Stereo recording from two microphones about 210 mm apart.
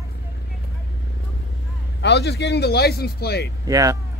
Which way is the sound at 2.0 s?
55° left (ahead or behind).